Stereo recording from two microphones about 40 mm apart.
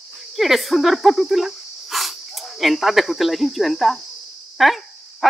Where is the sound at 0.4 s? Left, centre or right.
Centre.